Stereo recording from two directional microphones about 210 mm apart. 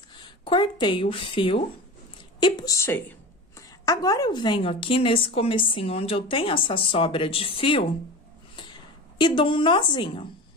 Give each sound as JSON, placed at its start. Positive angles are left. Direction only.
{"t": 0.2, "sound": "a woman's voice", "side_deg": 20}
{"t": 9.2, "sound": "a woman's voice", "side_deg": 25}